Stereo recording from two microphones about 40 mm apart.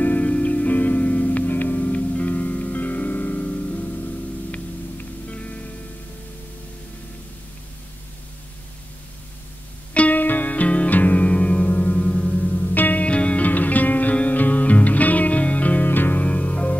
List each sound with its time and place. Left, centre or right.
0.0 s music: left
1.5 s music: left
1.9 s music: left
9.9 s music: left
12.7 s music: left
13.0 s music: left
13.5 s music: left
16.3 s music: left